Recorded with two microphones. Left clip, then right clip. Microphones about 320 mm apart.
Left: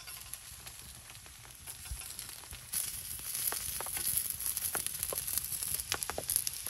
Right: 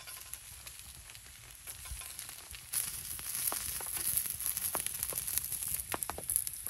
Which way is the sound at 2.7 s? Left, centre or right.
Centre.